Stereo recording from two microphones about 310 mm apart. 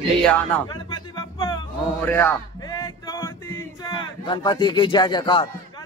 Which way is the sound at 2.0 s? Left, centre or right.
Centre.